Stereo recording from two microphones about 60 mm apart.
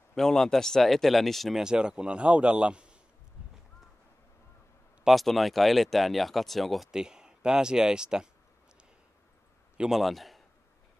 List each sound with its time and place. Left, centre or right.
0.1 s speech: centre
1.6 s speech: centre
5.0 s speech: centre
6.9 s speech: centre
9.8 s a man's voice: centre